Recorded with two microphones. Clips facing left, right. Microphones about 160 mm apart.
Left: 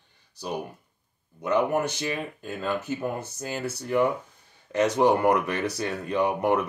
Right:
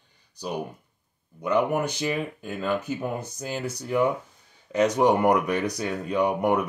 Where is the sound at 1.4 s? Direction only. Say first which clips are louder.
Even; 10° right (ahead or behind).